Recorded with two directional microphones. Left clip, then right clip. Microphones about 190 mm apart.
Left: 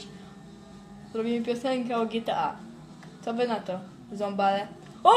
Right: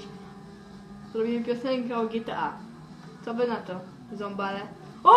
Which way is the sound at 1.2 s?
55° left (ahead or behind).